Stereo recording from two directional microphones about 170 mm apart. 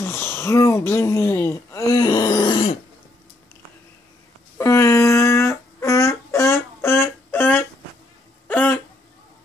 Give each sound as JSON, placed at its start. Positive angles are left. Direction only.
{"t": 0.0, "sound": "speech", "side_deg": 15}
{"t": 4.6, "sound": "a sound", "side_deg": 15}
{"t": 8.5, "sound": "hiccup", "side_deg": 10}